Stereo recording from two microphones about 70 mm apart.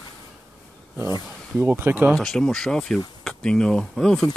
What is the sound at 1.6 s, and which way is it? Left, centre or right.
Speech, right.